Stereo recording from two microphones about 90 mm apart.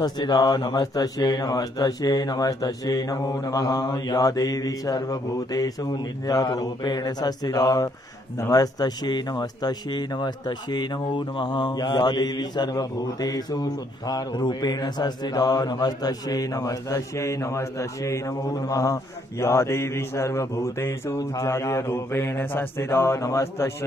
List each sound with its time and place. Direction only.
0.0 s speech: 50° left (ahead or behind)
19.4 s mantra: 30° left (ahead or behind)